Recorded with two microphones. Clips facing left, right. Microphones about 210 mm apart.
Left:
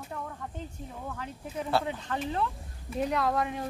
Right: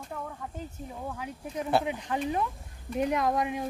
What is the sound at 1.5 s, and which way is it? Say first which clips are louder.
Speech: right 2 dB; 15° right (ahead or behind).